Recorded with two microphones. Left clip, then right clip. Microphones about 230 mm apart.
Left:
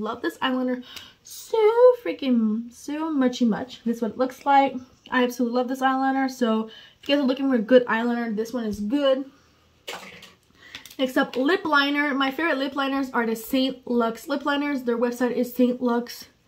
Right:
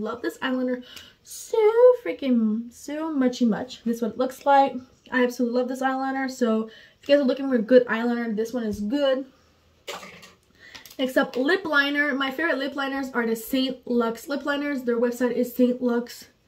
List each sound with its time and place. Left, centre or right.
0.0 s speech: centre
11.0 s speech: centre